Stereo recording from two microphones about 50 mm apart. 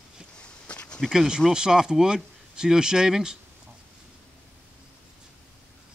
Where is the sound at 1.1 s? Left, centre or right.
Centre.